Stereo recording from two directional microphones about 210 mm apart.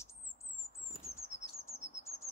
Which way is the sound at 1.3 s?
35° left (ahead or behind).